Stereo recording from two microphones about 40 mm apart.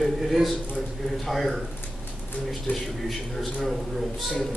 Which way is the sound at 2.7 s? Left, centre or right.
Left.